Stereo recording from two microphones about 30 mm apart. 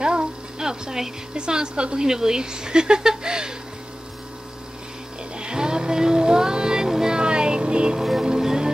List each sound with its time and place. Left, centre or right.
0.0 s a sound: right
1.3 s a woman's voice: right
2.0 s speech: centre
3.3 s music: right
5.4 s music: right
7.2 s a sound: right
8.2 s music: centre